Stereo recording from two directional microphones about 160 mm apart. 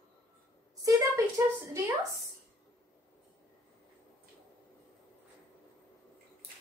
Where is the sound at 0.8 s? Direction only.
20° right (ahead or behind).